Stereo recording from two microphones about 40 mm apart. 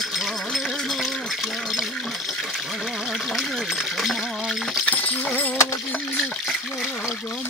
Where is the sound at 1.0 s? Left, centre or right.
Centre.